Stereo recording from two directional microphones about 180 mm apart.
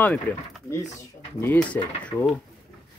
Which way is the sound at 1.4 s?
10° left (ahead or behind).